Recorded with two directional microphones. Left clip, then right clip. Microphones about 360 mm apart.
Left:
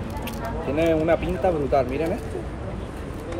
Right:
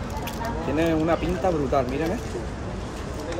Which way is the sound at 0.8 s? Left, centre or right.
Centre.